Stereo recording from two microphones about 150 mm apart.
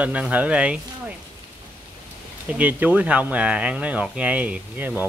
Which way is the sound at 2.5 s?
10° right (ahead or behind).